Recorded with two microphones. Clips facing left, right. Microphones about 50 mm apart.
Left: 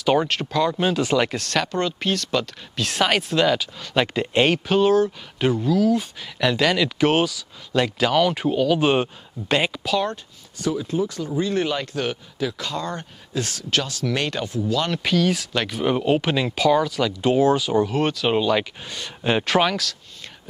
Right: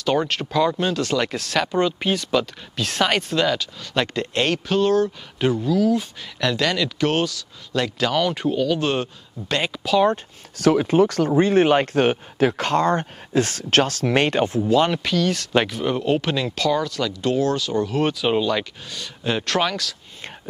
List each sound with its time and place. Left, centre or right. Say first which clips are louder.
0.0 s speech: left 1 dB; centre
0.7 s speech: left 2 dB; centre
1.3 s speech: right 2 dB; centre
10.6 s speech: right 7 dB; right
14.1 s speech: right 7 dB; right
15.0 s speech: left 1 dB; centre